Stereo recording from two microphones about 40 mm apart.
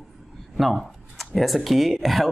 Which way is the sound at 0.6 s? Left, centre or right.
Centre.